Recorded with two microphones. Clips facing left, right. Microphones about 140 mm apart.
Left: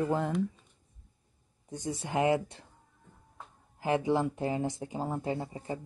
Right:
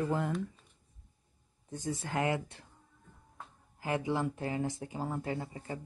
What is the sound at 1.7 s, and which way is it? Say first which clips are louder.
Speech: left 2 dB; 15° left (ahead or behind).